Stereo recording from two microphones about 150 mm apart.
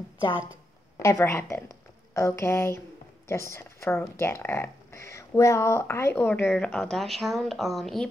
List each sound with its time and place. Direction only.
1.0 s a woman's voice: 20° left (ahead or behind); by 8.1 s centre (ahead or behind)